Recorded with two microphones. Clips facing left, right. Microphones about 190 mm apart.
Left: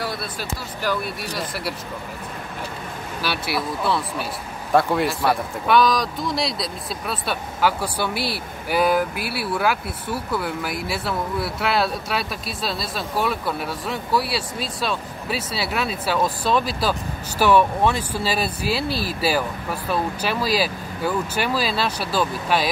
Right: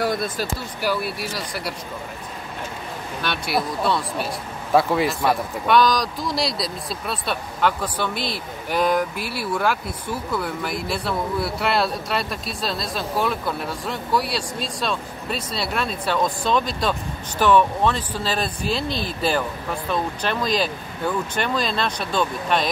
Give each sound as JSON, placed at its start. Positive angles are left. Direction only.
{"t": 0.0, "sound": "speech", "side_deg": -45}
{"t": 0.8, "sound": "speech", "side_deg": -5}
{"t": 3.2, "sound": "speech", "side_deg": 5}